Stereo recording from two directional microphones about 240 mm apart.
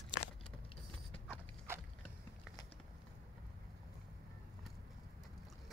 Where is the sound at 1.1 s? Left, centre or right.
Centre.